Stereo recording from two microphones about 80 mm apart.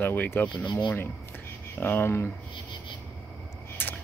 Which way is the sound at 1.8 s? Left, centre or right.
Left.